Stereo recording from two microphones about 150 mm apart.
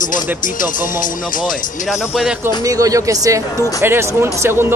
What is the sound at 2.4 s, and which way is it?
Speech, 20° right (ahead or behind).